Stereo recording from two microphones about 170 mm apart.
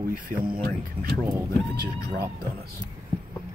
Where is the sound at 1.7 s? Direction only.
65° right (ahead or behind).